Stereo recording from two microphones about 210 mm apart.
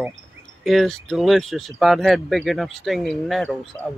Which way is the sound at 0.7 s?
Centre (ahead or behind).